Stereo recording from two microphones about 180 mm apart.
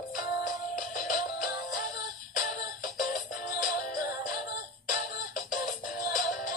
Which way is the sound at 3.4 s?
50° left (ahead or behind).